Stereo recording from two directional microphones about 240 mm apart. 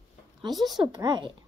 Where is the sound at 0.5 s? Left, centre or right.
Centre.